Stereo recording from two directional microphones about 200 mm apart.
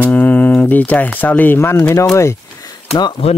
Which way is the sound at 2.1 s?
15° left (ahead or behind).